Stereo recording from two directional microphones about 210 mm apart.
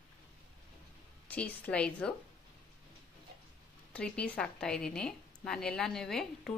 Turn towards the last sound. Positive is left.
turn(degrees=0)  # may be behind; listen again after turning